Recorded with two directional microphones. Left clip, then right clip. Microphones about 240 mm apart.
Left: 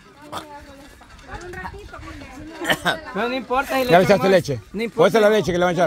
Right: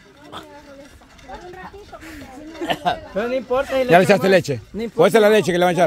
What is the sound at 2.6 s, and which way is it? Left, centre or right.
Speech, left.